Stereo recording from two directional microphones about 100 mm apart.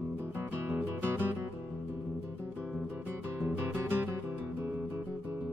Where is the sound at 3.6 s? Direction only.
20° right (ahead or behind).